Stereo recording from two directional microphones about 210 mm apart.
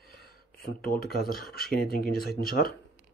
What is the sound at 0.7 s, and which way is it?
Speech, 45° left (ahead or behind).